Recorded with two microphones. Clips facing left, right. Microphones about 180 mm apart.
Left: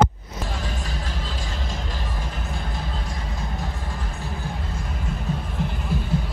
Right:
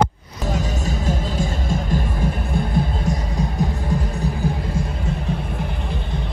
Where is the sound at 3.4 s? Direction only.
15° right (ahead or behind).